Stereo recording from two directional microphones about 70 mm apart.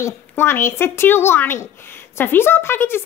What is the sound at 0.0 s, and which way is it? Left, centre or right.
A woman's voice, left.